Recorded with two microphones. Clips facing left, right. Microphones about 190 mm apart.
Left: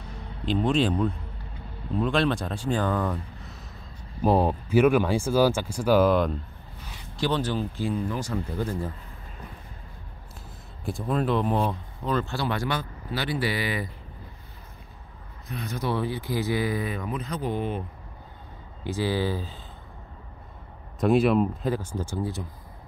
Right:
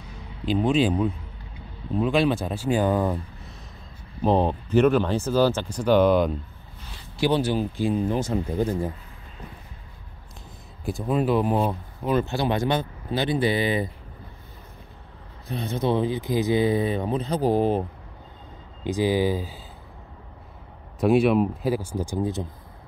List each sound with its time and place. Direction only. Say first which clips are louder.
0.5 s speech: right 2 dB; centre (ahead or behind)
4.2 s speech: right 1 dB; 5° left (ahead or behind)
7.2 s speech: right 4 dB; 10° right (ahead or behind)
10.9 s speech: right 3 dB; 5° right (ahead or behind); by 13.8 s 25° right (ahead or behind)
15.4 s speech: right 5 dB; 30° right (ahead or behind)
18.9 s speech: right 5 dB; 15° right (ahead or behind)
21.0 s speech: right 2 dB; centre (ahead or behind); by 22.5 s 20° right (ahead or behind)